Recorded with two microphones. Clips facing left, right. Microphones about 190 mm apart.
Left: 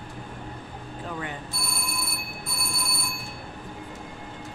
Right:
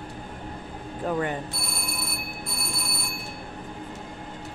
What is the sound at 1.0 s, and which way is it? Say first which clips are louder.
Speech: right 9 dB; 50° right (ahead or behind).